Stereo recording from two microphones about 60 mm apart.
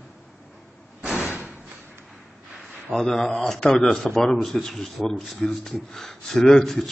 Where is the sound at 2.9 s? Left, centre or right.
Centre.